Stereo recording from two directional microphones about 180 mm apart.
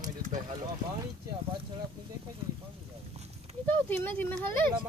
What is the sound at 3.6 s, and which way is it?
Speech, 10° left (ahead or behind).